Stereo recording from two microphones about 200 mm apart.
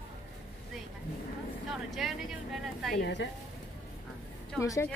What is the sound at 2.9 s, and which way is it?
Speech, 60° left (ahead or behind).